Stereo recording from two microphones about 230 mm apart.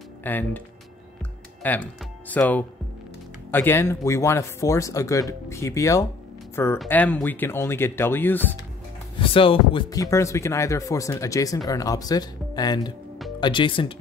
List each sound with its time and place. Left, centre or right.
0.2 s speech: centre
1.6 s speech: centre
9.2 s speech: left